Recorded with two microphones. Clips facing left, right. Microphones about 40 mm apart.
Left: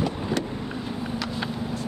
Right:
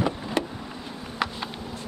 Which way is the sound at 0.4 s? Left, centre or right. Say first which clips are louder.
Right 2 dB; right.